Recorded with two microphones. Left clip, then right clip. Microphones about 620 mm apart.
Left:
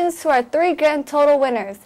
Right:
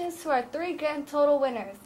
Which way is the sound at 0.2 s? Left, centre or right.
Left.